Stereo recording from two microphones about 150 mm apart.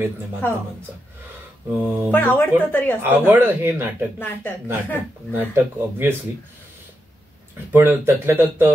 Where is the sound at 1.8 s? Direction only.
10° right (ahead or behind).